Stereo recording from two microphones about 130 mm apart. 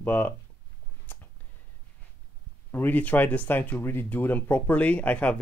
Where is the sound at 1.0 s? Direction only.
15° left (ahead or behind).